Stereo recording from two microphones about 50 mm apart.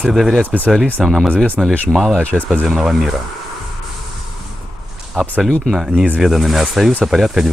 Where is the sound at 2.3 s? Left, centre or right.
Left.